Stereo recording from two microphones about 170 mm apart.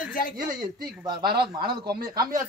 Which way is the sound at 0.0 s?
55° left (ahead or behind).